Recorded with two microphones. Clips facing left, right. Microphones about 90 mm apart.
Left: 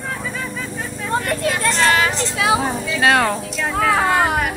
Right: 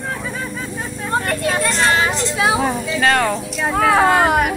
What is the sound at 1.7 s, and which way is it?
Speech, 25° right (ahead or behind).